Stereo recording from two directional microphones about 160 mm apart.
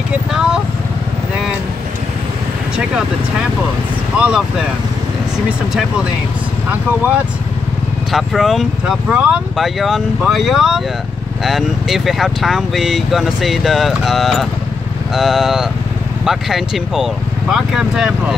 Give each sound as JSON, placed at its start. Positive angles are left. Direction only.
{"t": 0.3, "sound": "speech", "side_deg": -5}
{"t": 4.2, "sound": "speech", "side_deg": -5}
{"t": 8.1, "sound": "speech", "side_deg": 0}